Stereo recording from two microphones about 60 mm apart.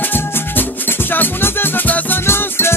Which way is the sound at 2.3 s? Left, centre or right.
Left.